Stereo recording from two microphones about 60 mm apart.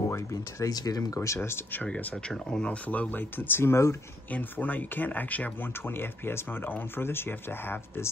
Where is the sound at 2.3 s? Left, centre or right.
Centre.